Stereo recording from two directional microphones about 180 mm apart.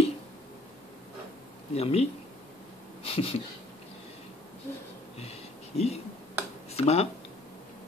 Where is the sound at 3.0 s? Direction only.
30° left (ahead or behind).